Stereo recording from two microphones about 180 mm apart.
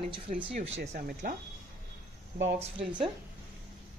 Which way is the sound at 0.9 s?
45° right (ahead or behind).